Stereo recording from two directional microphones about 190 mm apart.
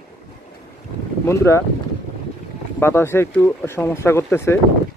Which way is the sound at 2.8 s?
15° left (ahead or behind).